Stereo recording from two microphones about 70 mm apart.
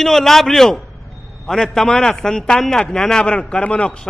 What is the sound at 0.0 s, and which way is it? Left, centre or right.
A man's voice, centre.